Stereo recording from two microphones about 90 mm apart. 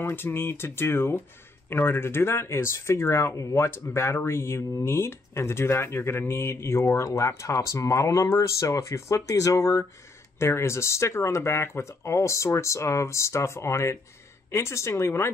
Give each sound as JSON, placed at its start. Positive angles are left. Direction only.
{"t": 0.0, "sound": "speech", "side_deg": 25}